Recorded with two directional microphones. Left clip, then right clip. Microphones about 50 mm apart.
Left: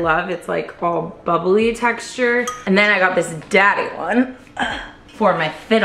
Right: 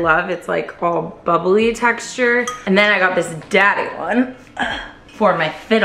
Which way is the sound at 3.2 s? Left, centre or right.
Left.